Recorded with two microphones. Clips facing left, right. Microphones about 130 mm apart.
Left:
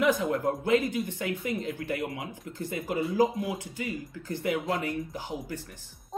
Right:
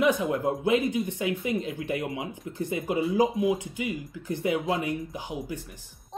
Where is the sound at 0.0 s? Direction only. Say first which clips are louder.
Right 1 dB; 20° right (ahead or behind).